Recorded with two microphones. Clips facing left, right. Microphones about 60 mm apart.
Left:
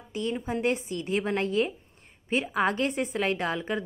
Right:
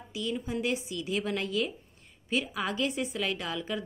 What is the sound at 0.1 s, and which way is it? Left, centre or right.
A woman's voice, left.